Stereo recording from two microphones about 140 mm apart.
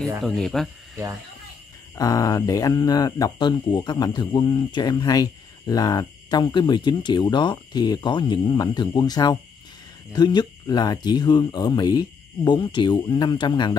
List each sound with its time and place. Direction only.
0.2 s speech: centre (ahead or behind)
2.0 s speech: 25° left (ahead or behind)